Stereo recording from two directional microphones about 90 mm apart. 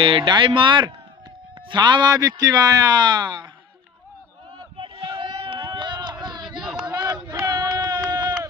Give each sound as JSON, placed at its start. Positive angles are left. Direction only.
{"t": 0.0, "sound": "speech", "side_deg": -80}
{"t": 0.3, "sound": "a man's voice", "side_deg": -60}
{"t": 4.7, "sound": "a sound", "side_deg": -90}